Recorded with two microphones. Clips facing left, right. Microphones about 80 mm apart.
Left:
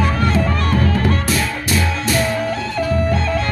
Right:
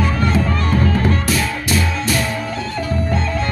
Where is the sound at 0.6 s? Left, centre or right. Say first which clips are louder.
Even; left.